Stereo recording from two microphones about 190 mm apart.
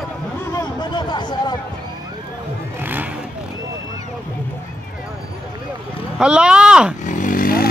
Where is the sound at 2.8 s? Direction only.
10° right (ahead or behind).